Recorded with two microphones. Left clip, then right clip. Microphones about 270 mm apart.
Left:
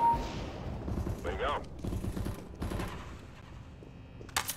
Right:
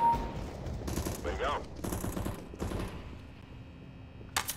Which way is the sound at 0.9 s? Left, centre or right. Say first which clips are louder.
Right 4 dB; right.